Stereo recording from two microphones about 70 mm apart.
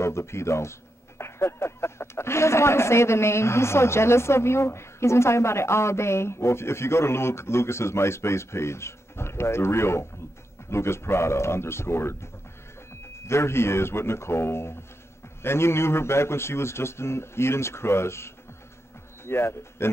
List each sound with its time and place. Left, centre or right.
0.0 s speech: left
13.3 s a man's voice: left